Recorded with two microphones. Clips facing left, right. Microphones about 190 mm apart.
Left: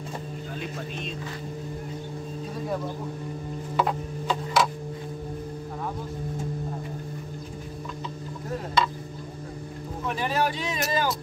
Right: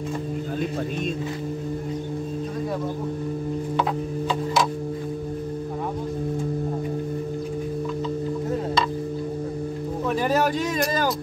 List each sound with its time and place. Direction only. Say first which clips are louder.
10.1 s speech: right 5 dB; 45° right (ahead or behind)